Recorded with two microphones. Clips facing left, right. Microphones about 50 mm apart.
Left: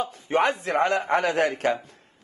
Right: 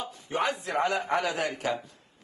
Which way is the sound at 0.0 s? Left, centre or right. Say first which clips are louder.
Left 7 dB; left.